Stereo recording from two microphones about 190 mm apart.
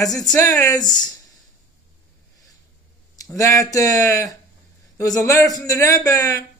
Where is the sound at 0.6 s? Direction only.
20° left (ahead or behind).